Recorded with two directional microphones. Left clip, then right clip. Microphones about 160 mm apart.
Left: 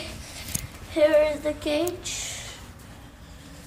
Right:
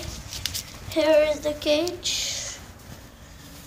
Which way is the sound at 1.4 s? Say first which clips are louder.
Right 3 dB; 30° right (ahead or behind).